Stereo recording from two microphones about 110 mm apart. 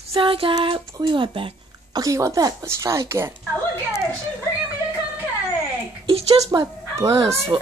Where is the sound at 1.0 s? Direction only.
45° right (ahead or behind).